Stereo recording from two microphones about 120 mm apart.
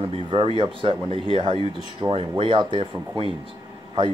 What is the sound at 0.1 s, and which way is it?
Speech, 50° right (ahead or behind).